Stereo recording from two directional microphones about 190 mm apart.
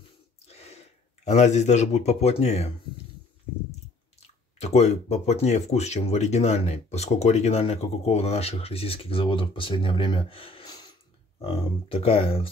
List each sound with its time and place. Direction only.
0.5 s speech: 35° left (ahead or behind)
4.2 s speech: 35° left (ahead or behind)